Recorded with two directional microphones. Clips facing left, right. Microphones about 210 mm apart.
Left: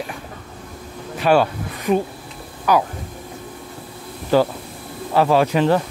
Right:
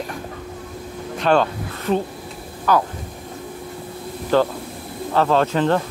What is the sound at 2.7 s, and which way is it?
Speech, 10° left (ahead or behind).